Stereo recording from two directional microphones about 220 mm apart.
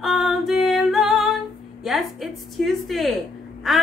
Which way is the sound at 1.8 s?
Centre (ahead or behind).